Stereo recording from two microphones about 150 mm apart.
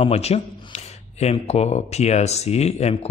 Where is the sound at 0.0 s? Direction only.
45° left (ahead or behind).